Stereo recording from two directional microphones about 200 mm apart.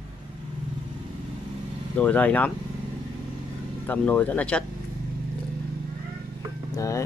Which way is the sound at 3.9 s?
10° left (ahead or behind).